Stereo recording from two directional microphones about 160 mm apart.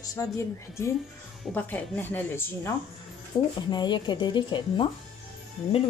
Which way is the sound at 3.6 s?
25° left (ahead or behind).